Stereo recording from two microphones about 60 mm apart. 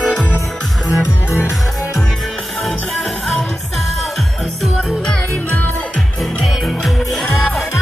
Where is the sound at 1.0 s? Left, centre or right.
Left.